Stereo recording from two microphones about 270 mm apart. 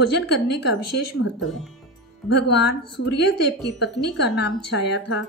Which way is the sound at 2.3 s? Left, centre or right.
Left.